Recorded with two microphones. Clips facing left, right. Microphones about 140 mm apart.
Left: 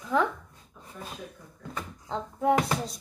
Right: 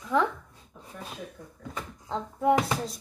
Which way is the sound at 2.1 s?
Centre (ahead or behind).